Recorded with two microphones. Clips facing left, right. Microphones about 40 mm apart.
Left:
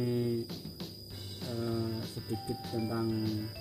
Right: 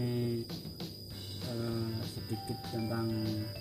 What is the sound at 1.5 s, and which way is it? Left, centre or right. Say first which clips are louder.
Music: left 2 dB; centre.